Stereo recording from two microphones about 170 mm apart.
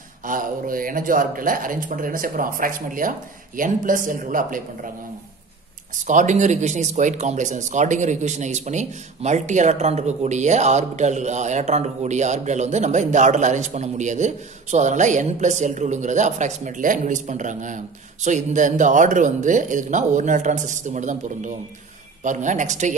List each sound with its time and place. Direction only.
0.2 s speech: 50° right (ahead or behind)
6.0 s speech: 45° right (ahead or behind)